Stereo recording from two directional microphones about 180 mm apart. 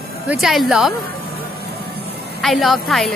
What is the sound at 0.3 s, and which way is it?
Speech, centre (ahead or behind).